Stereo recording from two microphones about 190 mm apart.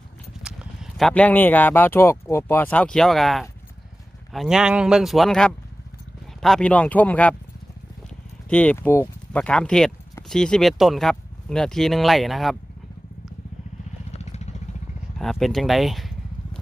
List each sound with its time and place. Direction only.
0.4 s speech: centre (ahead or behind)
8.5 s speech: 5° left (ahead or behind)
14.1 s vehicle: 35° left (ahead or behind)
15.1 s speech: centre (ahead or behind)